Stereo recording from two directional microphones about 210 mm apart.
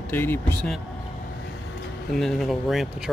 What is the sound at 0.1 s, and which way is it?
Speech, 10° left (ahead or behind).